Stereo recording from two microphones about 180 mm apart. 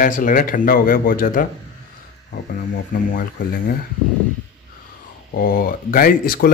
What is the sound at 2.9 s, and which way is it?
Speech, 50° left (ahead or behind).